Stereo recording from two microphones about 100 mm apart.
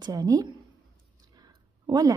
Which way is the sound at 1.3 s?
45° right (ahead or behind).